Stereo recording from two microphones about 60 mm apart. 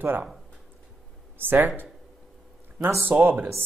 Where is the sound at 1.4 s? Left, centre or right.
Right.